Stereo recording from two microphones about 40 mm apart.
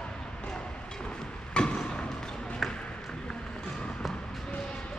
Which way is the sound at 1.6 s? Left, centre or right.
Left.